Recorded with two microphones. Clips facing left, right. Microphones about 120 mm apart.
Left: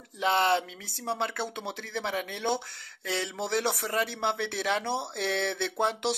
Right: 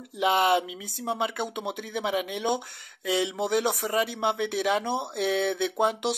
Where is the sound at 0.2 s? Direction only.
10° right (ahead or behind).